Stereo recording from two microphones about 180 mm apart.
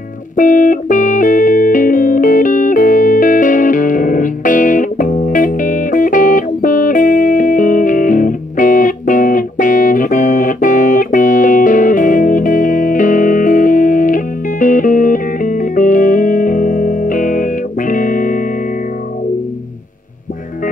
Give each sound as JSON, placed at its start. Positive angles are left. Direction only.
{"t": 0.4, "sound": "music", "side_deg": 45}